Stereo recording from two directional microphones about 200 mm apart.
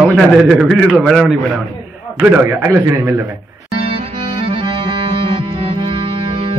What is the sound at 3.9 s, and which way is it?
Music, 25° right (ahead or behind).